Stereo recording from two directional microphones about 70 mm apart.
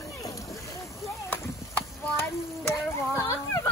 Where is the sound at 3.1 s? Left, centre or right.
Left.